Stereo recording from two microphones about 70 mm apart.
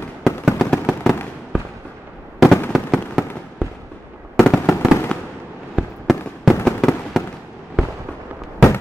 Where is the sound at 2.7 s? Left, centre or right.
Centre.